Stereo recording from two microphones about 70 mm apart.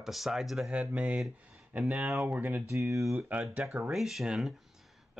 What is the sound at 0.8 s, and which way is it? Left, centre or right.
Speech, centre.